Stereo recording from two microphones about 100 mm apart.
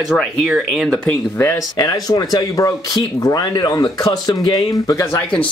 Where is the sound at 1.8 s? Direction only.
40° left (ahead or behind).